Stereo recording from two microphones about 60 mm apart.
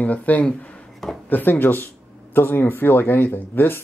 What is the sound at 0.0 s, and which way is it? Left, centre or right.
Speech, left.